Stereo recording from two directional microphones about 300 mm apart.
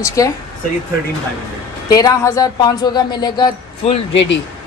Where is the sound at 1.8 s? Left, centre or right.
Centre.